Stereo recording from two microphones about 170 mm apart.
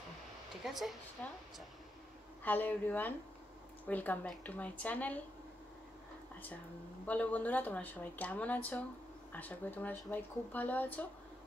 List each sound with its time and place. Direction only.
0.7 s speech: centre (ahead or behind)
2.4 s speech: 10° left (ahead or behind)
7.1 s speech: 10° left (ahead or behind)